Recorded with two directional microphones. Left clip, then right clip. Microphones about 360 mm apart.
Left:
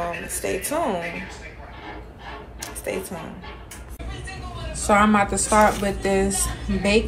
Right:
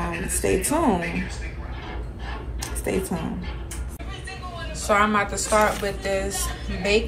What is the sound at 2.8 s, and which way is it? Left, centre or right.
Speech, centre.